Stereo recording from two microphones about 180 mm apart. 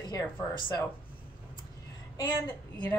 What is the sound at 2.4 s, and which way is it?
Speech, 10° left (ahead or behind).